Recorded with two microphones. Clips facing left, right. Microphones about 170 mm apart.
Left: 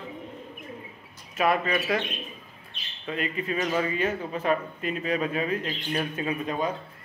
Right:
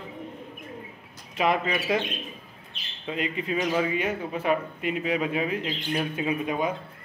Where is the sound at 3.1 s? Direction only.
15° right (ahead or behind).